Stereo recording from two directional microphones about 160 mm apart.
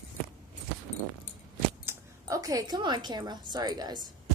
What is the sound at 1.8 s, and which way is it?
A woman's voice, 20° right (ahead or behind).